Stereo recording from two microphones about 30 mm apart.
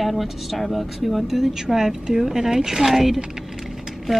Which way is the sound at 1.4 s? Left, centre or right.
Centre.